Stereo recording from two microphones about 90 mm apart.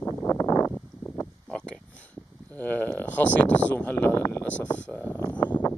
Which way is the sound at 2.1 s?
20° left (ahead or behind).